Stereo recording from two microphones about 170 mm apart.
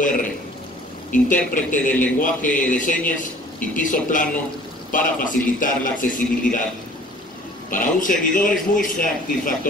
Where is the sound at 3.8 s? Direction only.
50° left (ahead or behind).